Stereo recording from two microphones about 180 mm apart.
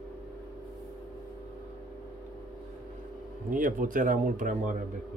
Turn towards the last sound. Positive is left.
turn(degrees=-50)  # may be behind; listen again after turning